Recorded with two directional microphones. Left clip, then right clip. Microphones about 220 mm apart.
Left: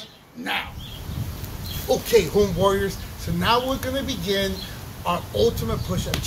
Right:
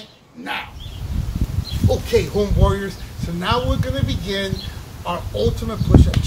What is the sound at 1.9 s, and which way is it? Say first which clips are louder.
Speech: even; 5° left (ahead or behind).